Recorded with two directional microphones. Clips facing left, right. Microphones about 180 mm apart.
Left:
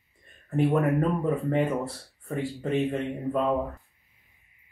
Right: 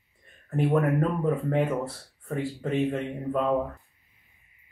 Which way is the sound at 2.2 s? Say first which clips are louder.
Even; centre (ahead or behind).